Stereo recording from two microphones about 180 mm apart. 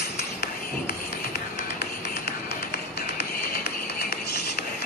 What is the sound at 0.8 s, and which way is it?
Music, 65° left (ahead or behind).